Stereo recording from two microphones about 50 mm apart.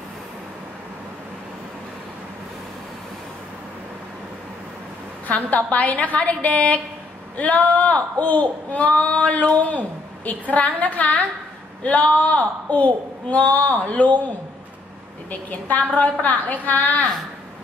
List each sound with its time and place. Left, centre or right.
5.3 s speech: left
16.0 s a woman's voice: left